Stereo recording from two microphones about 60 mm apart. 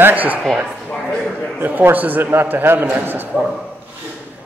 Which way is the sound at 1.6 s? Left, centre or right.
Right.